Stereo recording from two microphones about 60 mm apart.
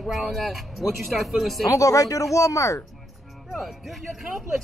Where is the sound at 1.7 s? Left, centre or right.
Left.